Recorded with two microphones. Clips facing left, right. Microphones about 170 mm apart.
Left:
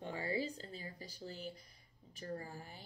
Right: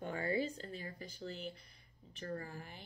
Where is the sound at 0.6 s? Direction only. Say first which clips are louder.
Right 3 dB; 55° right (ahead or behind).